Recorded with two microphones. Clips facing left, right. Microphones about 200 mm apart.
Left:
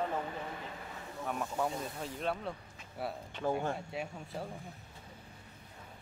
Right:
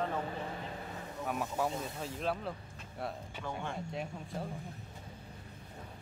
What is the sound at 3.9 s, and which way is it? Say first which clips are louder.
Speech: even; 5° left (ahead or behind).